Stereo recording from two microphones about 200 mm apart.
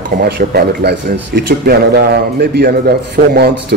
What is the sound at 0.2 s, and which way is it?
Speech, 50° right (ahead or behind).